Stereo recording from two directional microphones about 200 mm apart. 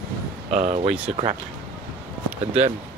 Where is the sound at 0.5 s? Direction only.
35° right (ahead or behind).